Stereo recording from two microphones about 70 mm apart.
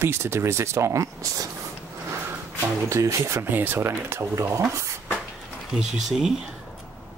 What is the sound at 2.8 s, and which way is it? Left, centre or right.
Speech, right.